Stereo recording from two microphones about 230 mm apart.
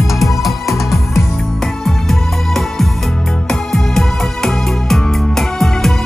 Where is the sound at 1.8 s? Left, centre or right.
Centre.